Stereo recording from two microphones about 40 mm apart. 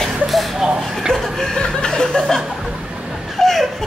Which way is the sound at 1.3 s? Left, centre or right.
Centre.